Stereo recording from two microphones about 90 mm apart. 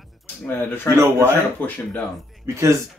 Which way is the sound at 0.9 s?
30° right (ahead or behind).